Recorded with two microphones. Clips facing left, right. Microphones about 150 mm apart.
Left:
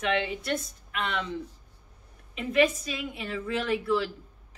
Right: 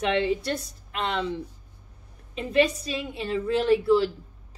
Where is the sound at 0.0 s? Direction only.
35° right (ahead or behind).